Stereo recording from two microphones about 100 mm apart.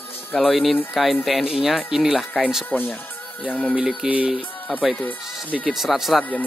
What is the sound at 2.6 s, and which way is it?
Speech, 20° left (ahead or behind).